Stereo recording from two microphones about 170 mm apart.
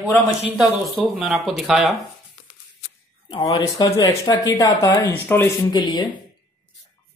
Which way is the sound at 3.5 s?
20° left (ahead or behind).